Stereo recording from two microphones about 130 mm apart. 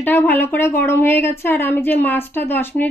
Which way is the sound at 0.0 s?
15° left (ahead or behind).